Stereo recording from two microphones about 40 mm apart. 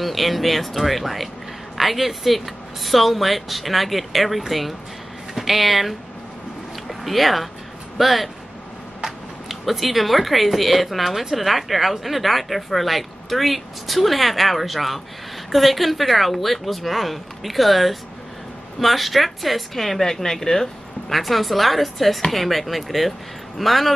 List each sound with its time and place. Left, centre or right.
0.0 s speech: centre
21.1 s speech: centre